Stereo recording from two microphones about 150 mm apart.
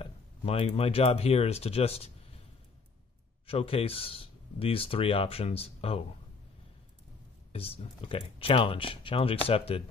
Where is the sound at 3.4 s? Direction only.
40° left (ahead or behind).